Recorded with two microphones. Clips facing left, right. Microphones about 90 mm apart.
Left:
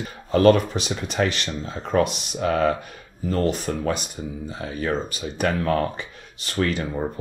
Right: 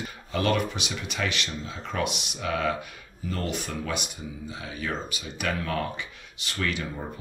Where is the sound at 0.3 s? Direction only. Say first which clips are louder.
Left 10 dB; 40° left (ahead or behind).